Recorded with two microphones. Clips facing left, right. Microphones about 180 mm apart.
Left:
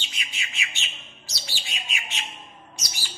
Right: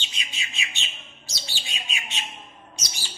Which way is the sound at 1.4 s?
20° right (ahead or behind).